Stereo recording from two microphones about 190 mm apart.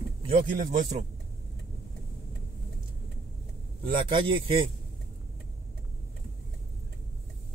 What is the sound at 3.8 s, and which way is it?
Speech, 25° right (ahead or behind).